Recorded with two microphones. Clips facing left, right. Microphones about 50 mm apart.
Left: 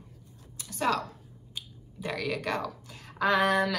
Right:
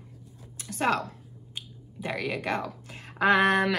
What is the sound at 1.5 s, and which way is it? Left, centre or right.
A woman's voice, right.